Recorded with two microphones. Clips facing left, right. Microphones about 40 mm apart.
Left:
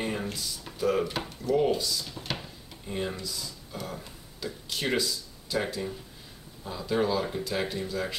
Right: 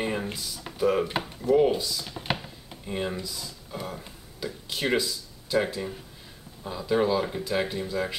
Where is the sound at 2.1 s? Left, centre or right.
Right.